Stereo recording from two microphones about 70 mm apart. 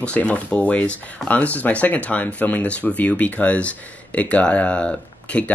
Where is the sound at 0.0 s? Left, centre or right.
Centre.